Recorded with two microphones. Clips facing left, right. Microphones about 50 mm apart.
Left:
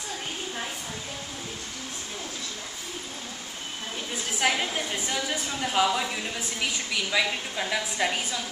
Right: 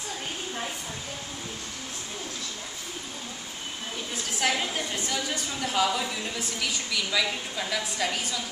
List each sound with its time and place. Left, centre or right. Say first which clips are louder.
4.1 s a woman's voice: left 2 dB; centre